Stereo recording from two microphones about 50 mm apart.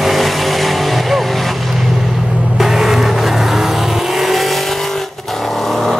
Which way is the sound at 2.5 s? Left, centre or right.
Centre.